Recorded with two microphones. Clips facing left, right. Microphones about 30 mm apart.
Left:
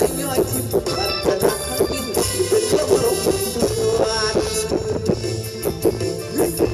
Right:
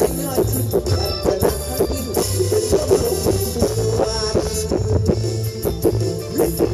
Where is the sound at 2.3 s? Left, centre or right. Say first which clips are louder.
Left 1 dB; left.